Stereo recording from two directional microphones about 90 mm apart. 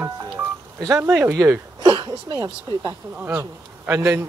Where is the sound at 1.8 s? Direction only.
55° right (ahead or behind).